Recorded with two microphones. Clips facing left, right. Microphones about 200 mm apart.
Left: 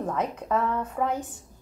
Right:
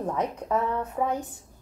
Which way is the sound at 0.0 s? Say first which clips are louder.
Even; 10° right (ahead or behind).